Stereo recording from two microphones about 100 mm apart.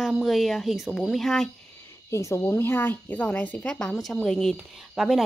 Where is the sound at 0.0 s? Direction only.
Centre (ahead or behind).